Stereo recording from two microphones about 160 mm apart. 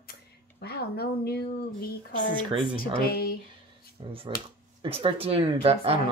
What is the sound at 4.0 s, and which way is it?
Speech, 35° right (ahead or behind).